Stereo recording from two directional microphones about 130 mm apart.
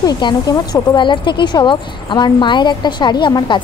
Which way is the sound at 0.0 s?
35° left (ahead or behind).